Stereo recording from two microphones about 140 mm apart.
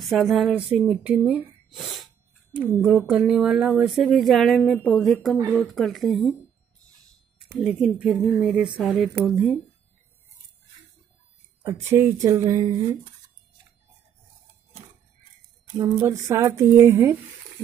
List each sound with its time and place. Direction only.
0.0 s speech: centre (ahead or behind)
7.6 s speech: 5° right (ahead or behind)
11.8 s speech: 15° right (ahead or behind)
15.8 s speech: 25° right (ahead or behind)